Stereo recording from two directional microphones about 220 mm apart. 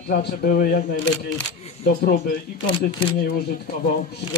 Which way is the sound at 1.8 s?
45° left (ahead or behind).